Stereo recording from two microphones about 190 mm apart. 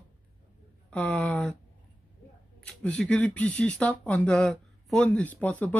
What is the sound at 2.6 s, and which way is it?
Speech, 5° left (ahead or behind).